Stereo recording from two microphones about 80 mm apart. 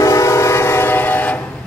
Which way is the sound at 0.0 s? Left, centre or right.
Left.